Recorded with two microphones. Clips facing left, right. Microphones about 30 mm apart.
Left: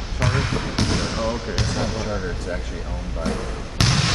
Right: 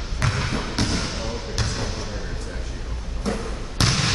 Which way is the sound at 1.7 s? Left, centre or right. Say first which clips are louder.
Left 5 dB; left.